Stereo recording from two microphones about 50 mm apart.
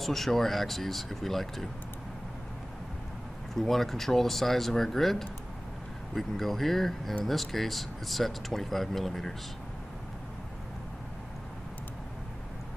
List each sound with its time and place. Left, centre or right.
0.0 s speech: centre
3.5 s speech: centre